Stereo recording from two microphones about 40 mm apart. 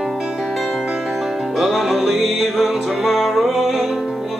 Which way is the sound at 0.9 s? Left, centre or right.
Centre.